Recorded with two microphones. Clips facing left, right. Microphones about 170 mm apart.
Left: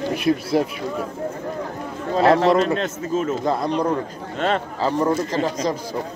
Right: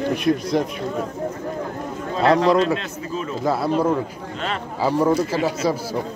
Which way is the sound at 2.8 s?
45° left (ahead or behind).